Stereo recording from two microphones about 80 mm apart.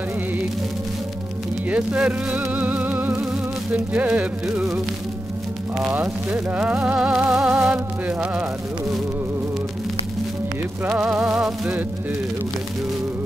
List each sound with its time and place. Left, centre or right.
1.7 s music: centre
5.9 s speech: right
6.6 s music: centre
11.0 s music: centre